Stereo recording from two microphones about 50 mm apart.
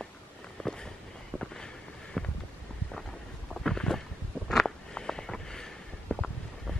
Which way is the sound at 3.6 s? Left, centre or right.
Centre.